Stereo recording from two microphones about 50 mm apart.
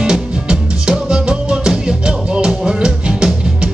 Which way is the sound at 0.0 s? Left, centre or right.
Centre.